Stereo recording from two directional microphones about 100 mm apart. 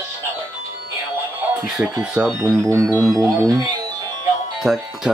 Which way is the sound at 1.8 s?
5° right (ahead or behind).